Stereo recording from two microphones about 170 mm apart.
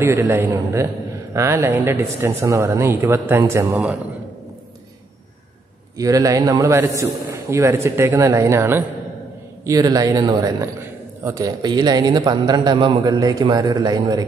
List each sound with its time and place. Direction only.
0.0 s a man's voice: 15° right (ahead or behind)
5.9 s a man's voice: 20° right (ahead or behind)